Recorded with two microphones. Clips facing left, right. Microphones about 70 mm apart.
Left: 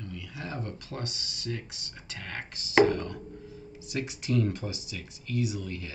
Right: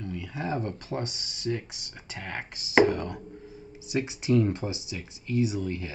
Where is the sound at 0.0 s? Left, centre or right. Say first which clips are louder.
Right 6 dB; right.